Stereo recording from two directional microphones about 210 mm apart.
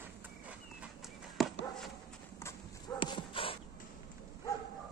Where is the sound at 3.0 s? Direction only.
25° left (ahead or behind).